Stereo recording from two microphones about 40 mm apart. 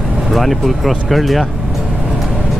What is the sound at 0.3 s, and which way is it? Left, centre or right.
Speech, centre.